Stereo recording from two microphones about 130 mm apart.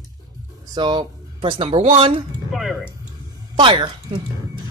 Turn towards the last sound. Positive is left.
turn(degrees=-40)  # may be behind; listen again after turning